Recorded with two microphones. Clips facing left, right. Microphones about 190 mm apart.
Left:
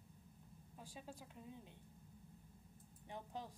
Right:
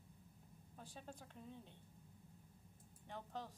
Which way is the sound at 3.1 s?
15° left (ahead or behind).